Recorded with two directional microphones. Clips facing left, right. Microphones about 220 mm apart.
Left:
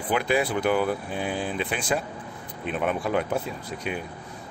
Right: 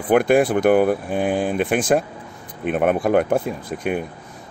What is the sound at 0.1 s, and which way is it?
Speech, 50° right (ahead or behind).